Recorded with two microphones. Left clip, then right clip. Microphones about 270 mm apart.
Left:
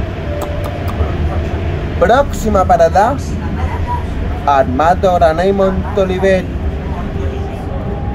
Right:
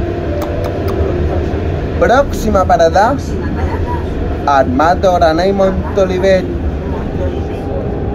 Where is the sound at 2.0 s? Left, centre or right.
Left.